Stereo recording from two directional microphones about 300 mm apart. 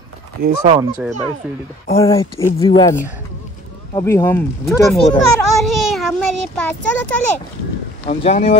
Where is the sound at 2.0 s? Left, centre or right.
Centre.